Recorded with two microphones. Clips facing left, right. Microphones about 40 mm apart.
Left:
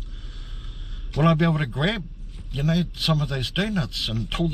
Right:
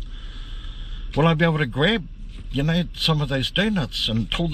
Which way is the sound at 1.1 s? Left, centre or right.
Right.